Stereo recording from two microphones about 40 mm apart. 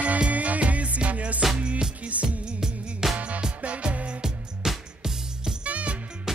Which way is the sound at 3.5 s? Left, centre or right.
Right.